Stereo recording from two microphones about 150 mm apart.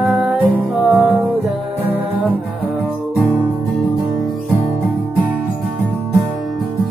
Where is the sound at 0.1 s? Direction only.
5° right (ahead or behind).